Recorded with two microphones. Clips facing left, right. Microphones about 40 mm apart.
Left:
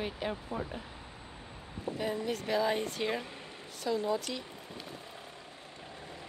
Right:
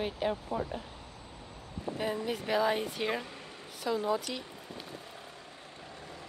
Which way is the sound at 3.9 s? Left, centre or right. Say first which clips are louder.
Right 1 dB; right.